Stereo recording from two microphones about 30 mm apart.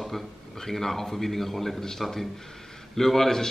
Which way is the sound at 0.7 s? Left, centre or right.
Centre.